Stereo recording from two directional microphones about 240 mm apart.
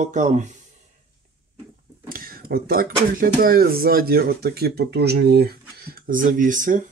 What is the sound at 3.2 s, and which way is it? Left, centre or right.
Speech, right.